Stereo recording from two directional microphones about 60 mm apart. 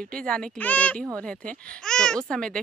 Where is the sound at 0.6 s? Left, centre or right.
Left.